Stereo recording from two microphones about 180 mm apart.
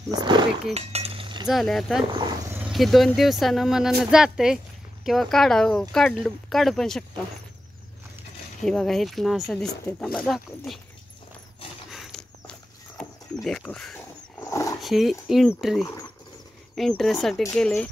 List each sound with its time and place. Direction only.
0.1 s roaring cats: 25° right (ahead or behind)
0.7 s cutlery: 35° right (ahead or behind)
1.5 s speech: centre (ahead or behind)
8.6 s speech: centre (ahead or behind)
11.9 s a sound: centre (ahead or behind)
14.4 s dog: 15° left (ahead or behind)
14.8 s speech: centre (ahead or behind)